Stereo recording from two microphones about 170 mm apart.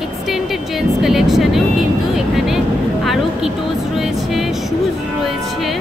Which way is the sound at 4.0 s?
Centre (ahead or behind).